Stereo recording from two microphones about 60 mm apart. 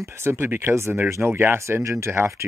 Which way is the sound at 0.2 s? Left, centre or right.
Right.